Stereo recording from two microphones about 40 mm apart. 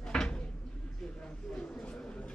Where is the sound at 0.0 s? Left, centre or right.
Centre.